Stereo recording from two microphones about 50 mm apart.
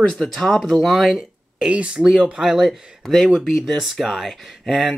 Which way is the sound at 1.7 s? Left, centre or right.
Right.